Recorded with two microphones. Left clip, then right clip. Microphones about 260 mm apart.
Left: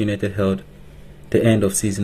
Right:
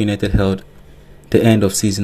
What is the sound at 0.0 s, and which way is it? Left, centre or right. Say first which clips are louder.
Speech: right 3 dB; centre.